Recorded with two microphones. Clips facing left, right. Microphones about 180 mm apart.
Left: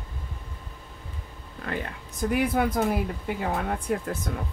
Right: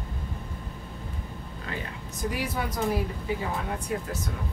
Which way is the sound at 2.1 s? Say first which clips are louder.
Left 7 dB; 55° left (ahead or behind).